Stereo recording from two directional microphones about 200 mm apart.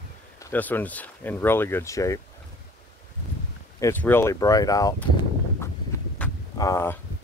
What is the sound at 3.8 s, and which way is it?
Speech, 10° left (ahead or behind).